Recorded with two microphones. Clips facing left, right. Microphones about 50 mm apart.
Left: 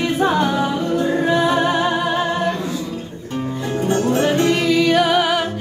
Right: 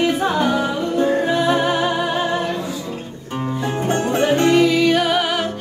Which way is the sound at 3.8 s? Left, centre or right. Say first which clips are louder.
Left 2 dB; right.